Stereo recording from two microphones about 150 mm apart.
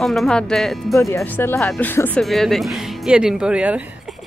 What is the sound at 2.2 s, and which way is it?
Speech, centre (ahead or behind).